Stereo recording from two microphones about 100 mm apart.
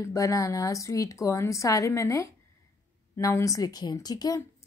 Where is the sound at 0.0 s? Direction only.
35° left (ahead or behind).